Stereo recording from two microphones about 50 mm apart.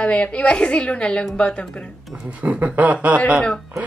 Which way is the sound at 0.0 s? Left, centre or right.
Left.